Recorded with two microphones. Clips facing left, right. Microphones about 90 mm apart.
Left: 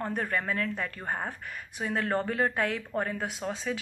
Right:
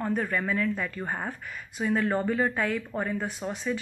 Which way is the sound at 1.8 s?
50° left (ahead or behind).